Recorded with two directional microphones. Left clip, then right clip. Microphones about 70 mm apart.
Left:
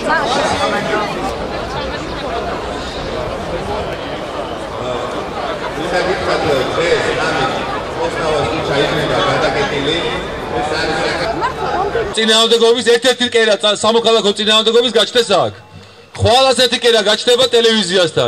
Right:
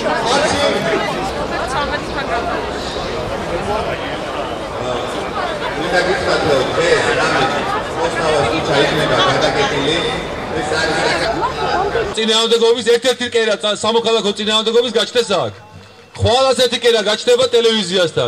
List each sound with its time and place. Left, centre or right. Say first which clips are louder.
5.9 s a sound: even; centre
8.3 s chatter: right 2 dB; right
12.2 s a man's voice: left 3 dB; centre